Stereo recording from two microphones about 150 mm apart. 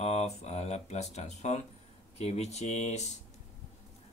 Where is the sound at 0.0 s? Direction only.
45° left (ahead or behind).